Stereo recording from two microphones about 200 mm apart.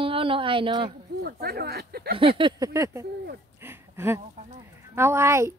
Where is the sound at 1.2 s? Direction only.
50° right (ahead or behind).